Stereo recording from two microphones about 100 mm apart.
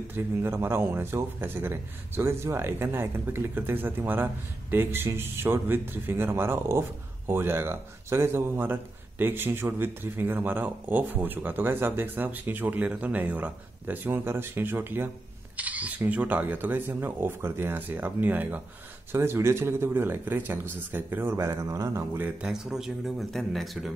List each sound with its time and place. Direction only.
0.1 s a man's voice: 25° right (ahead or behind)
22.2 s a man's voice: 10° right (ahead or behind)